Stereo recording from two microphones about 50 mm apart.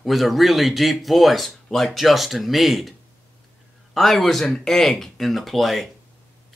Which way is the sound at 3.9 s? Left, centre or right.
Centre.